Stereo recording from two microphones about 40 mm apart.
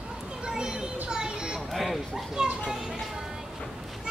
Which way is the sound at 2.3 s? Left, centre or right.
Centre.